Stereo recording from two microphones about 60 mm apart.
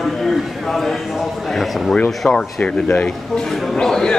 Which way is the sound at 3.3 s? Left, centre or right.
Centre.